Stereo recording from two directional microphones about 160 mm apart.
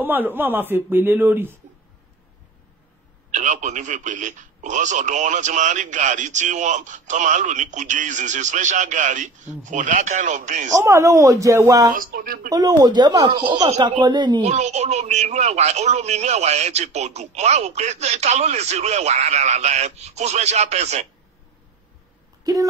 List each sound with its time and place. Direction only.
0.0 s speech: 10° right (ahead or behind)
3.3 s a man's voice: 50° right (ahead or behind)
10.7 s speech: 20° right (ahead or behind)
11.9 s speech: 60° right (ahead or behind)
12.4 s speech: 25° right (ahead or behind)
14.5 s a man's voice: 45° right (ahead or behind)
22.4 s a sound: 20° right (ahead or behind)